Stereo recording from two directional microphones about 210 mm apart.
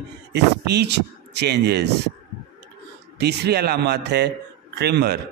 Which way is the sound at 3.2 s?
50° right (ahead or behind).